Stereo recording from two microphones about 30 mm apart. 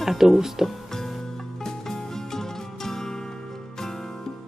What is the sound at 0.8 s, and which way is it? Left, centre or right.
Music, centre.